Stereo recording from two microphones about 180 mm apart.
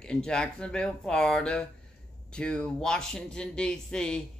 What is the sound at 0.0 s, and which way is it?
Speech, 5° left (ahead or behind).